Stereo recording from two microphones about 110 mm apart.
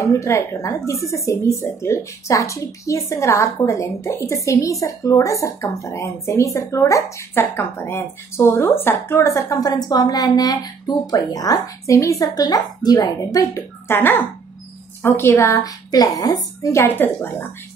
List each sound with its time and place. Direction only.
0.0 s a woman's voice: 25° left (ahead or behind)
16.8 s a woman's voice: 20° left (ahead or behind)